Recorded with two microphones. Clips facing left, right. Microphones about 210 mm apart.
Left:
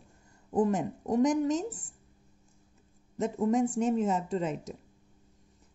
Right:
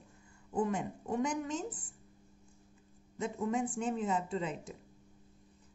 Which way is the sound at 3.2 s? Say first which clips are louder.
Left 7 dB; 40° left (ahead or behind).